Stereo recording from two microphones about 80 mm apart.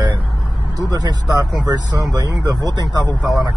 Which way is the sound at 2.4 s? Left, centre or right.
Right.